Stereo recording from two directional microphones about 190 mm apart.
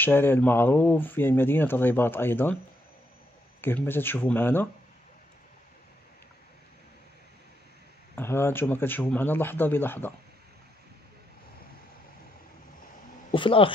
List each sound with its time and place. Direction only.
0.0 s speech: 10° left (ahead or behind)
3.6 s speech: 10° left (ahead or behind)
8.2 s speech: 10° left (ahead or behind)
13.3 s speech: 25° left (ahead or behind)